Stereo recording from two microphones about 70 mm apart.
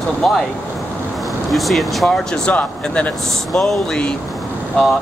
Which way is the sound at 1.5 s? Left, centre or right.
Centre.